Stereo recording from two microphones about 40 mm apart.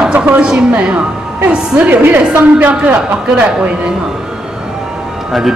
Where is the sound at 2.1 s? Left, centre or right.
Right.